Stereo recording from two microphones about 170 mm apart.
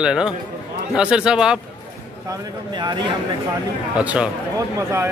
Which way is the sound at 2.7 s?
25° right (ahead or behind).